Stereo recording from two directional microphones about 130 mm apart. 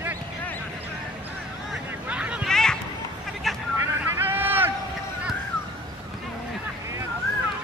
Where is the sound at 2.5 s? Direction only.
5° left (ahead or behind).